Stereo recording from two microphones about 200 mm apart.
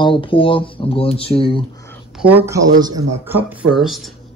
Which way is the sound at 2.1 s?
10° right (ahead or behind).